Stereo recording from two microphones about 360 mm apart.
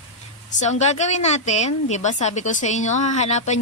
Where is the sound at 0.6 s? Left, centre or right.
Centre.